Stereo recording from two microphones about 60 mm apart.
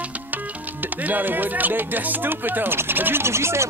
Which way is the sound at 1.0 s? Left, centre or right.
Right.